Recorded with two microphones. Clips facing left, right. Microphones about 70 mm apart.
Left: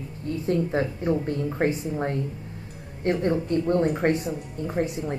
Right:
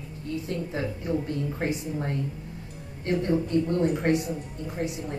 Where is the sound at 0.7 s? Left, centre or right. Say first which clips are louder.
Left 4 dB; left.